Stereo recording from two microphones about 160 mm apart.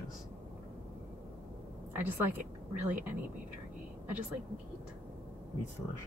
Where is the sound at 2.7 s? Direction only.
10° right (ahead or behind).